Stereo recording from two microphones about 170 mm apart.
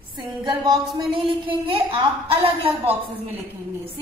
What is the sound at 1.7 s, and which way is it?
A woman's voice, 30° right (ahead or behind).